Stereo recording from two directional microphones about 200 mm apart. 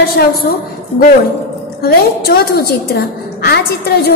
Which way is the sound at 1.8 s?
50° left (ahead or behind).